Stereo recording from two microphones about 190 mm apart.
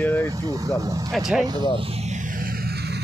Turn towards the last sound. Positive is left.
turn(degrees=-60)  # may be behind; listen again after turning